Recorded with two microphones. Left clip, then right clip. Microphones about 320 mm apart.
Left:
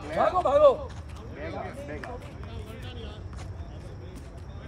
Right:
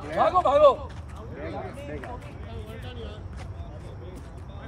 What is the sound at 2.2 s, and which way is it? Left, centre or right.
Vehicle, centre.